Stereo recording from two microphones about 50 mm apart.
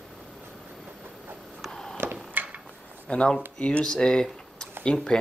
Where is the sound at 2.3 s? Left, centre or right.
Right.